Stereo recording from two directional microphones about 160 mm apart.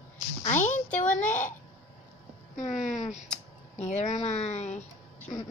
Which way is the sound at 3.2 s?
5° left (ahead or behind).